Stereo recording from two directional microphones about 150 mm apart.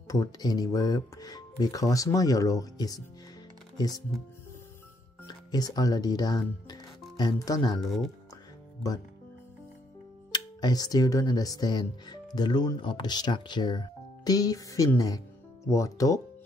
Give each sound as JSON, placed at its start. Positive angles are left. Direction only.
{"t": 0.1, "sound": "speech", "side_deg": 25}
{"t": 5.2, "sound": "speech", "side_deg": 25}
{"t": 8.8, "sound": "speech", "side_deg": 25}
{"t": 10.3, "sound": "speech", "side_deg": 25}